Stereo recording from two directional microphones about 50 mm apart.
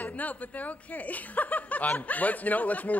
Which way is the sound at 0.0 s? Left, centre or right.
Left.